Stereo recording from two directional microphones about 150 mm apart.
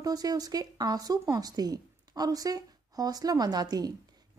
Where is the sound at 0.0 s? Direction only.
25° right (ahead or behind).